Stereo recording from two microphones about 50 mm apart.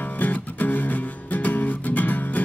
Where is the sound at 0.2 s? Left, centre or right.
Left.